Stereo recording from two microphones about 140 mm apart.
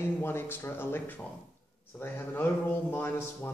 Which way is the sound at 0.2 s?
15° left (ahead or behind).